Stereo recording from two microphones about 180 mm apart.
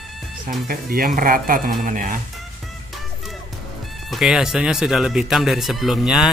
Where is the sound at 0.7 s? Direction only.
55° right (ahead or behind).